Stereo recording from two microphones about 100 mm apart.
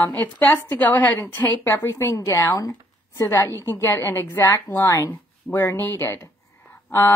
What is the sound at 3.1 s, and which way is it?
A woman's voice, 25° left (ahead or behind).